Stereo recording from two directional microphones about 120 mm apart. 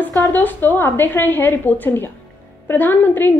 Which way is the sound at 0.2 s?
15° left (ahead or behind).